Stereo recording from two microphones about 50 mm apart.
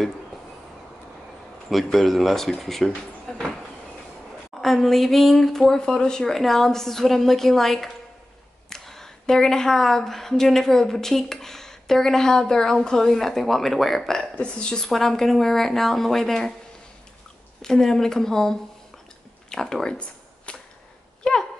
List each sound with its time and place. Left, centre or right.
1.7 s speech: centre
3.3 s cupboard open or close: centre
4.6 s a woman's voice: centre
14.4 s a woman's voice: centre
14.9 s a woman's voice: centre
17.6 s a woman's voice: centre
20.0 s a sound: left